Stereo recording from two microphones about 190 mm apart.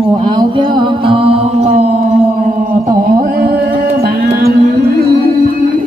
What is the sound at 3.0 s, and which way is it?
Music, 50° right (ahead or behind).